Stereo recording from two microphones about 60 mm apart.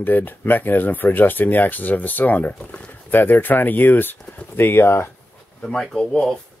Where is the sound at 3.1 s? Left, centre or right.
Left.